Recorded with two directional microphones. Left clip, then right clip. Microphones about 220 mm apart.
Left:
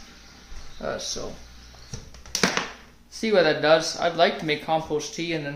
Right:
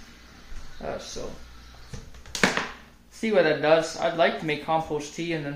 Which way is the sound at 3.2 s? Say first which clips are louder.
Left 2 dB; 15° left (ahead or behind).